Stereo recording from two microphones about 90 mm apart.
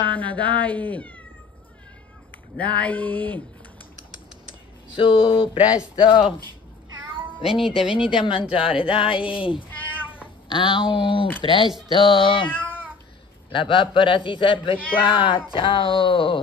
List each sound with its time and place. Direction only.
0.1 s speech: 15° left (ahead or behind)
2.6 s speech: 15° left (ahead or behind)
4.9 s speech: 75° left (ahead or behind)
5.9 s speech: 65° left (ahead or behind)
7.8 s speech: 10° right (ahead or behind)
8.1 s speech: 65° left (ahead or behind)
10.5 s speech: 65° left (ahead or behind)
12.4 s cat: 20° left (ahead or behind)
13.5 s speech: 65° left (ahead or behind)